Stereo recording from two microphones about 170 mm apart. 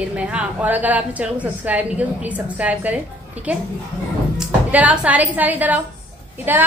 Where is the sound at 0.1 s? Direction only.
5° right (ahead or behind).